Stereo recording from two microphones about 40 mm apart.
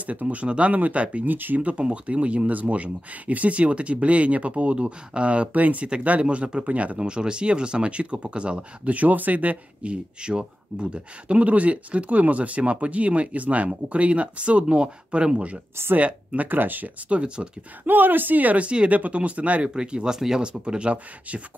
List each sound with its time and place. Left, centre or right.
0.0 s speech: right
1.2 s speech: right
1.6 s speech: right
5.5 s speech: right
7.0 s speech: right
8.9 s speech: right
10.2 s speech: right
16.3 s speech: right
17.1 s speech: right
17.8 s speech: right
19.7 s speech: right